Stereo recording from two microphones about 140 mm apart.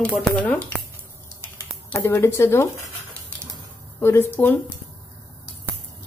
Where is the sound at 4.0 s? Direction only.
15° left (ahead or behind).